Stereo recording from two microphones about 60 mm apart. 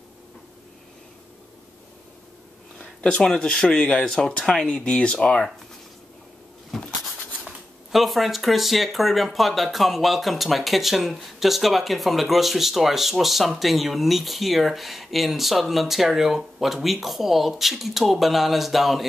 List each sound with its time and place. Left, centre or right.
3.0 s speech: centre
6.7 s a sound: centre
7.9 s speech: centre